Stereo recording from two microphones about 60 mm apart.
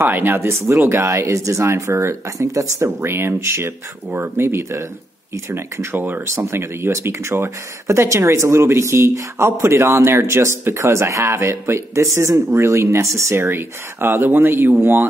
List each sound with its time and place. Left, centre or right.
0.1 s speech: right
3.0 s speech: right
5.9 s speech: right
6.3 s speech: right
13.4 s speech: right